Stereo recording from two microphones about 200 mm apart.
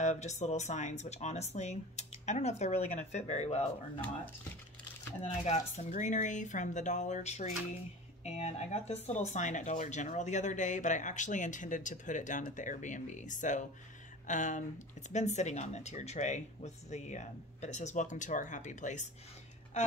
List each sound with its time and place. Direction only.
0.0 s speech: 35° left (ahead or behind)
5.2 s speech: 35° left (ahead or behind)